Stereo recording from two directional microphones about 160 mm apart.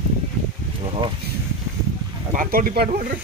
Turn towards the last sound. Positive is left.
turn(degrees=-60)  # may be behind; listen again after turning